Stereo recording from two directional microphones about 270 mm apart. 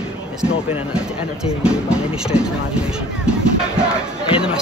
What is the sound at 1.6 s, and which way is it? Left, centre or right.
Speech, centre.